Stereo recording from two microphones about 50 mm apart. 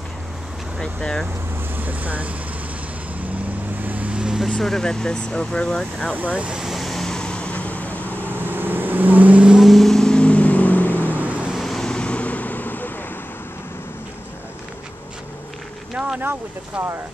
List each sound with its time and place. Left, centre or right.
0.7 s speech: centre
1.8 s speech: right
3.8 s vehicle: right
4.1 s vehicle: centre
4.6 s speech: centre
6.1 s speech: right
6.7 s vehicle: centre
7.3 s vehicle: left
8.3 s vehicle: right
9.6 s vehicle: centre; by 11.1 s left
11.1 s vehicle: right
11.5 s vehicle: centre
11.8 s vehicle: left
16.2 s speech: right